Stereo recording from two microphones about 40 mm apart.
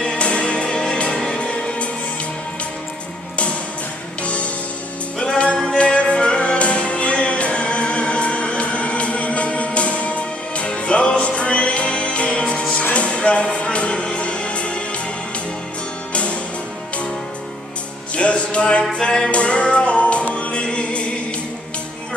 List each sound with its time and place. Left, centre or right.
0.2 s music: left
4.2 s music: left
16.1 s music: left
18.1 s music: left
19.3 s music: left